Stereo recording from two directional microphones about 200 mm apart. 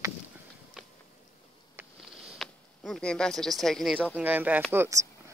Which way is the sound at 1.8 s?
Centre (ahead or behind).